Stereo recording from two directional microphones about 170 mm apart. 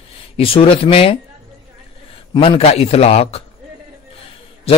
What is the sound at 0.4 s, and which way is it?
Speech, 35° left (ahead or behind).